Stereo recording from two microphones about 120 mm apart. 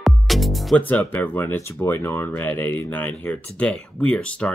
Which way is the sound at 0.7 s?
15° left (ahead or behind).